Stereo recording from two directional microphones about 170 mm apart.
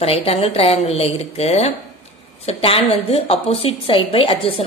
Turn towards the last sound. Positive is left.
turn(degrees=30)  # may be behind; listen again after turning